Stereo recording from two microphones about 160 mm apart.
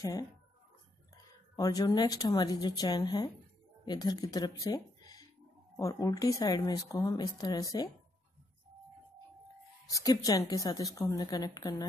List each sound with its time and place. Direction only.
0.0 s speech: 25° left (ahead or behind)
1.6 s speech: 25° left (ahead or behind)
9.8 s speech: 20° left (ahead or behind)